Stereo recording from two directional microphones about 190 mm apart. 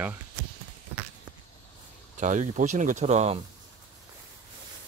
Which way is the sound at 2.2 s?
40° right (ahead or behind).